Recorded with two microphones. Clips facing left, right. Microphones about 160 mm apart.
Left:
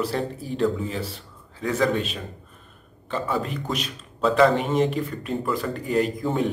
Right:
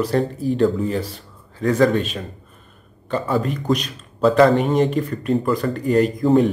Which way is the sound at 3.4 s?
Centre (ahead or behind).